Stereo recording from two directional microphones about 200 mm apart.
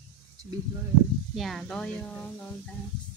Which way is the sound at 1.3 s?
Centre (ahead or behind).